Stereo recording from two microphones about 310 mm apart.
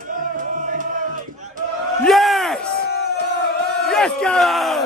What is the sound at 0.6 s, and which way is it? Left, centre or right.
Music, right.